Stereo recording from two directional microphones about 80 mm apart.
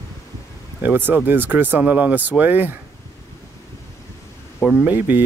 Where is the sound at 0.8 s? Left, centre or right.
Right.